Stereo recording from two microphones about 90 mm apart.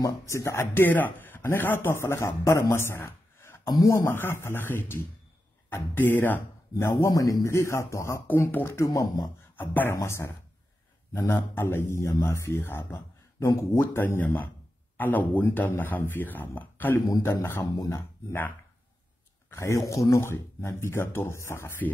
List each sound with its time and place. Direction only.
0.0 s speech: 35° left (ahead or behind)
3.6 s speech: 40° left (ahead or behind)
9.6 s speech: 25° left (ahead or behind)
19.5 s speech: 35° left (ahead or behind)